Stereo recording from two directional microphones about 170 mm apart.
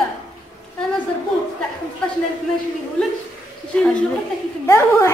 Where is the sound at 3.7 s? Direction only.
5° left (ahead or behind).